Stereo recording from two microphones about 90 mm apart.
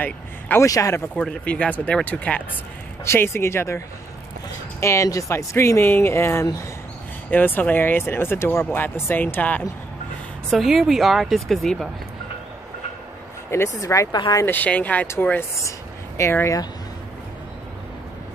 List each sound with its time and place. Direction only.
0.0 s speech: 20° left (ahead or behind)
0.7 s speech: 35° left (ahead or behind)
1.1 s speech: 10° left (ahead or behind)
3.1 s speech: 30° left (ahead or behind)
7.2 s speech: 20° left (ahead or behind)
10.5 s speech: centre (ahead or behind)
13.5 s speech: 30° left (ahead or behind)
14.1 s speech: 55° left (ahead or behind)
14.4 s speech: 20° left (ahead or behind)
16.2 s speech: 30° left (ahead or behind)